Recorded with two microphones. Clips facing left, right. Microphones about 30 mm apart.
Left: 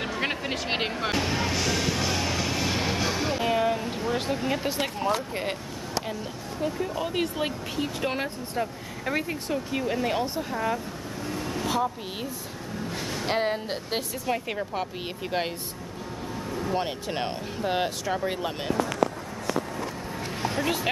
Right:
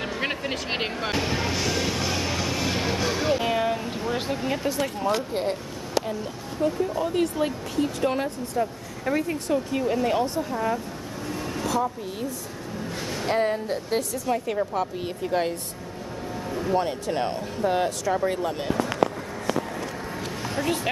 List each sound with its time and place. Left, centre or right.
0.0 s speech: centre
6.6 s speech: centre
11.2 s vehicle: centre
11.6 s speech: left
13.0 s a sound: centre
13.3 s speech: left
16.4 s vehicle: centre
16.7 s speech: centre
20.6 s speech: left